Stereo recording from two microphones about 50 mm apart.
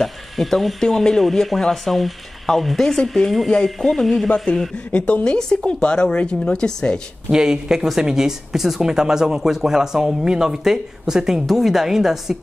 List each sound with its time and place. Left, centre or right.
0.0 s speech: centre
4.7 s speech: left
7.2 s speech: centre